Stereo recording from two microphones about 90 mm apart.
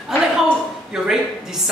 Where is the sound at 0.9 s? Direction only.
5° right (ahead or behind).